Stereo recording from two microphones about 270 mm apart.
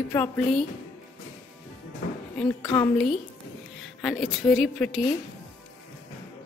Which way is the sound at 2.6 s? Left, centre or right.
Centre.